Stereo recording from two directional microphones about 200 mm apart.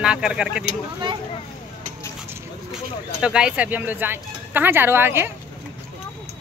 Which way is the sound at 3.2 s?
5° right (ahead or behind).